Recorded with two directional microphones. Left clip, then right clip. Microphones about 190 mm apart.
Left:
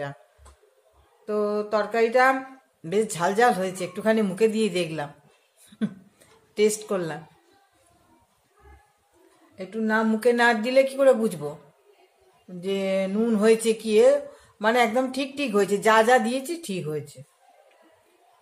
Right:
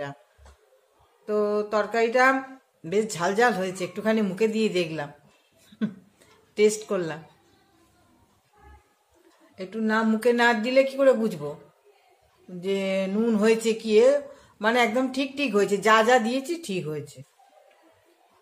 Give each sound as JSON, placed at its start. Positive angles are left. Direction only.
{"t": 1.2, "sound": "speech", "side_deg": 0}
{"t": 6.5, "sound": "speech", "side_deg": 5}
{"t": 9.6, "sound": "speech", "side_deg": -5}
{"t": 12.5, "sound": "speech", "side_deg": 0}